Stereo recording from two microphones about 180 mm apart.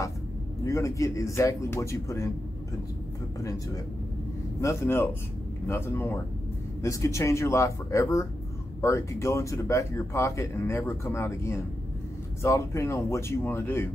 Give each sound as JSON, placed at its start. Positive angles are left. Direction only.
{"t": 0.7, "sound": "speech", "side_deg": 15}
{"t": 3.3, "sound": "speech", "side_deg": 20}